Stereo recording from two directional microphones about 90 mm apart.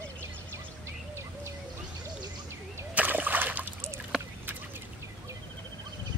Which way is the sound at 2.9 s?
20° right (ahead or behind).